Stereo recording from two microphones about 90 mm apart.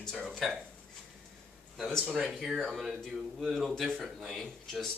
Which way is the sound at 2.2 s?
Centre (ahead or behind).